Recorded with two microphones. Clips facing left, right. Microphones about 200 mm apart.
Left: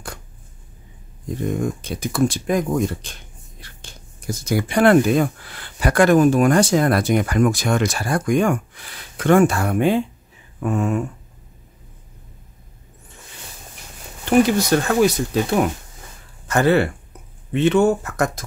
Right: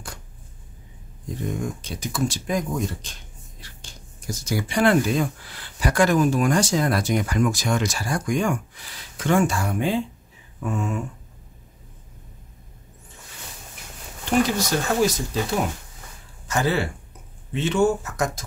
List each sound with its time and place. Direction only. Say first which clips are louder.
1.6 s speech: left 6 dB; 55° left (ahead or behind)
14.7 s speech: left 5 dB; 60° left (ahead or behind)
16.4 s speech: left 7 dB; 60° left (ahead or behind)